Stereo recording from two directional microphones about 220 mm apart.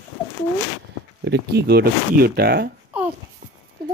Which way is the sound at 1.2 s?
50° right (ahead or behind).